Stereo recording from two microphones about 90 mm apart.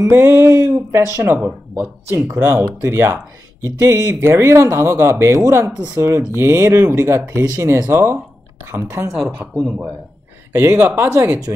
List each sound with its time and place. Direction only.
0.1 s speech: 25° right (ahead or behind)
9.4 s speech: 15° right (ahead or behind)
10.5 s speech: 25° right (ahead or behind)